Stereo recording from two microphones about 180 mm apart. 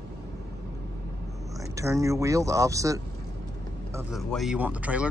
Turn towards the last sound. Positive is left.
turn(degrees=-5)  # may be behind; listen again after turning